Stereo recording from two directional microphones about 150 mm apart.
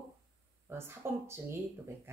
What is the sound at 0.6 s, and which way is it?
Speech, 15° right (ahead or behind).